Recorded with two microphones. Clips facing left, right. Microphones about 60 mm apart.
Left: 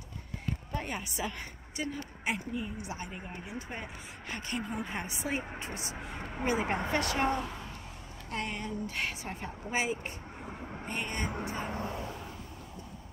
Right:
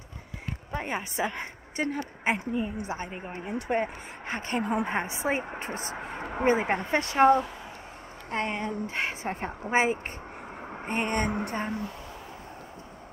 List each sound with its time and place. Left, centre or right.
0.7 s a woman's voice: right
1.8 s speech: right
3.5 s a woman's voice: right
4.3 s speech: right
4.6 s a woman's voice: right
4.9 s a woman's voice: right
10.7 s vehicle: right
11.1 s a woman's voice: right
11.4 s speech: right
11.7 s speech: left